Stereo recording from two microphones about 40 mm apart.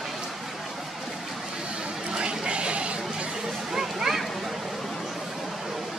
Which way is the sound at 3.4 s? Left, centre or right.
Centre.